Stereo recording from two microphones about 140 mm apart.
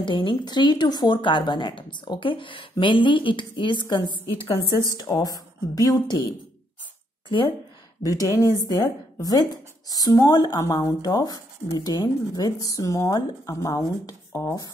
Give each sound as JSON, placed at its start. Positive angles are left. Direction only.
{"t": 0.0, "sound": "speech", "side_deg": 35}
{"t": 8.0, "sound": "speech", "side_deg": 25}